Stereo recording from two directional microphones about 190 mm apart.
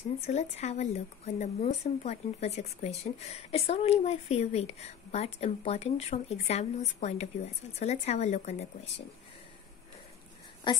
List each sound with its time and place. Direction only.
0.3 s speech: 35° left (ahead or behind)
10.7 s a woman's voice: 25° left (ahead or behind)